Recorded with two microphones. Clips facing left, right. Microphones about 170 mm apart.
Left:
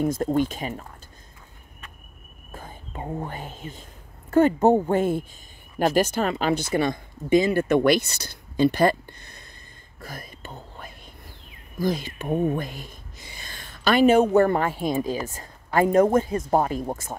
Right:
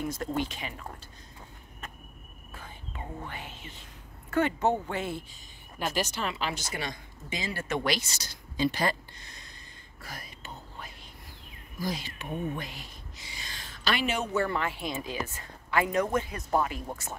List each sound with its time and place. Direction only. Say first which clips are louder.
0.0 s speech: left 9 dB; 50° left (ahead or behind)
2.5 s speech: left 6 dB; 45° left (ahead or behind)
9.9 s whispering: left 5 dB; 50° left (ahead or behind)
11.8 s speech: left 9 dB; 50° left (ahead or behind)